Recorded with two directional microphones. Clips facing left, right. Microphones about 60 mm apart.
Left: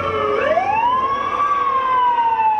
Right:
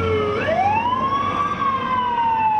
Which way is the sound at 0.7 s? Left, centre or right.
Centre.